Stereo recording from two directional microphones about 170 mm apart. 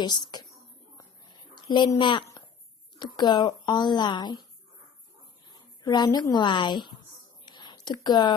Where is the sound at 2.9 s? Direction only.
25° left (ahead or behind).